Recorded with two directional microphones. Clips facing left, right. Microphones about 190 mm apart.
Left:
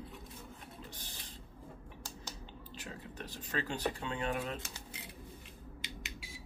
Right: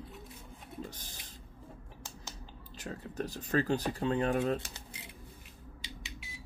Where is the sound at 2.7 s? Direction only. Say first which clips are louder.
Right 8 dB; 40° right (ahead or behind).